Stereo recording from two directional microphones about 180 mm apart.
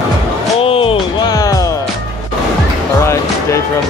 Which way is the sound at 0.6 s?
30° left (ahead or behind).